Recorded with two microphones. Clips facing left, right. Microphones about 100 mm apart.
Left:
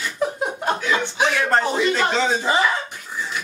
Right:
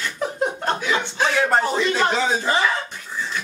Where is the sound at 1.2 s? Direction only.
15° left (ahead or behind).